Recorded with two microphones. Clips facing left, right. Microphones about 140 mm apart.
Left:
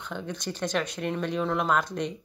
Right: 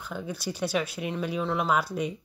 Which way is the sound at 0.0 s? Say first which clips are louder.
Even; 5° right (ahead or behind).